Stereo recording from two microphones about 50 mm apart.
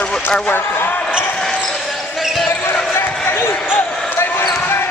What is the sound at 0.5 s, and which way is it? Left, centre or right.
Speech, left.